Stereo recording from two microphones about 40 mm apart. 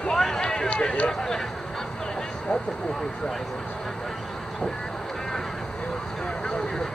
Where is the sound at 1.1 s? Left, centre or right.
Centre.